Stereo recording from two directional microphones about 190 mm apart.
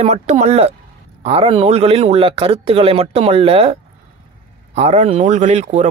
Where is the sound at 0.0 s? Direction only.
35° right (ahead or behind).